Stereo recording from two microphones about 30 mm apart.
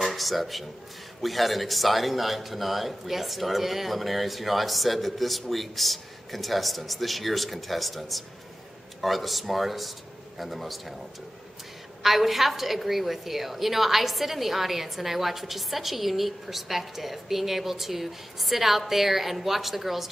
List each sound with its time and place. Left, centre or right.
0.0 s a woman's voice: centre
12.0 s a woman's voice: centre